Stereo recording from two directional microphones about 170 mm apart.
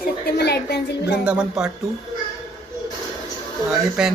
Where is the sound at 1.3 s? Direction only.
5° right (ahead or behind).